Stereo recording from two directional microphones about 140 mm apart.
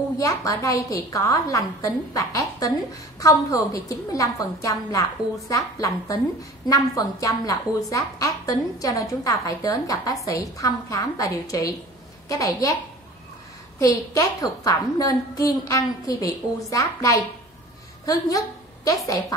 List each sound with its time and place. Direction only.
0.2 s a woman's voice: 25° left (ahead or behind)
13.7 s a woman's voice: 25° left (ahead or behind)